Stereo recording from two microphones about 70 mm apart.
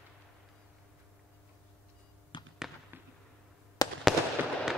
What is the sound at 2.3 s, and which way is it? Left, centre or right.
Fireworks, left.